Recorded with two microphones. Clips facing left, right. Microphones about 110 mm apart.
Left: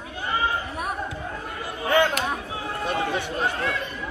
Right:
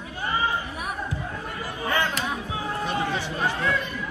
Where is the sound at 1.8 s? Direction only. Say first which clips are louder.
Left 5 dB; centre (ahead or behind).